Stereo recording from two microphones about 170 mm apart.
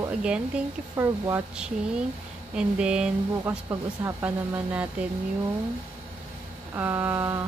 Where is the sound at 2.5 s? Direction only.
5° right (ahead or behind).